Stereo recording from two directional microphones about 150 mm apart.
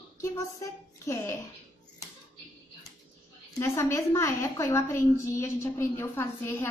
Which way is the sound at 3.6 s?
20° left (ahead or behind).